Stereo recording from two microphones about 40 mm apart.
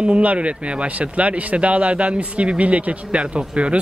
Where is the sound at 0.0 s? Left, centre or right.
Right.